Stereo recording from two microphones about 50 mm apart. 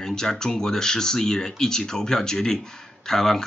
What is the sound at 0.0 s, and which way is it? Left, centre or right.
Speech, centre.